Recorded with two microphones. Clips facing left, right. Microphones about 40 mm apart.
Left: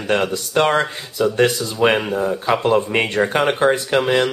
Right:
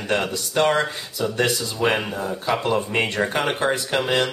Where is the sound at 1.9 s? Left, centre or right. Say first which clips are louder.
Left 6 dB; centre.